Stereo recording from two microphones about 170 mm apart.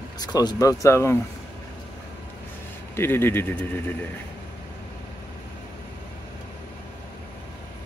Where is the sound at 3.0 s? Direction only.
15° left (ahead or behind).